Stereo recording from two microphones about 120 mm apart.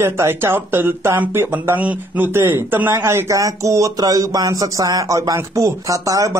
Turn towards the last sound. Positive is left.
turn(degrees=-30)  # may be behind; listen again after turning